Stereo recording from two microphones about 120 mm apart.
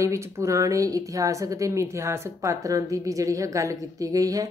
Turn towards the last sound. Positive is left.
turn(degrees=-30)  # may be behind; listen again after turning